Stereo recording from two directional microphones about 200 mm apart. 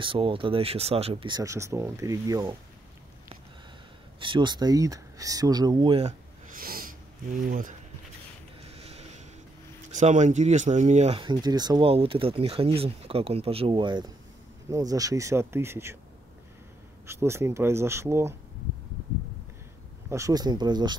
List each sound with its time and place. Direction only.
0.0 s speech: 25° right (ahead or behind)
4.2 s speech: 25° right (ahead or behind)
6.5 s sniff: 45° right (ahead or behind)
8.6 s a sound: 30° right (ahead or behind)
9.8 s speech: 35° right (ahead or behind); by 16.0 s 10° right (ahead or behind)
17.0 s speech: 15° right (ahead or behind)
20.1 s speech: 15° right (ahead or behind)